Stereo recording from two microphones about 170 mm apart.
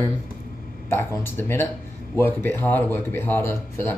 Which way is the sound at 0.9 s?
15° left (ahead or behind).